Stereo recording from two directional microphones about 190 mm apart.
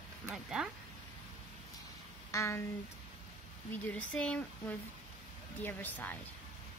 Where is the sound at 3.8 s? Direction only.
5° left (ahead or behind).